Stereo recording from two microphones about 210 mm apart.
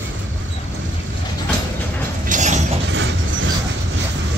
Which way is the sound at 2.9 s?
60° right (ahead or behind).